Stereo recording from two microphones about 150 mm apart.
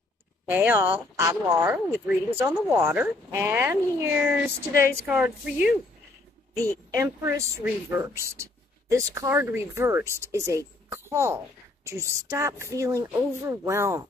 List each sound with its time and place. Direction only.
0.5 s speech: 15° right (ahead or behind)
6.9 s speech: 20° right (ahead or behind)